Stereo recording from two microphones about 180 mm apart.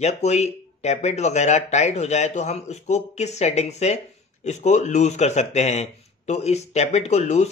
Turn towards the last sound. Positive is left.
turn(degrees=35)  # may be behind; listen again after turning